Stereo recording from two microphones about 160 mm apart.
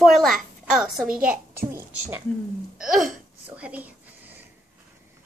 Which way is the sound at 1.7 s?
15° right (ahead or behind).